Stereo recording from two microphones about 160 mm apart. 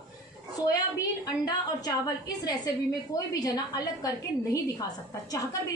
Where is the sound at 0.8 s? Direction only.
25° left (ahead or behind).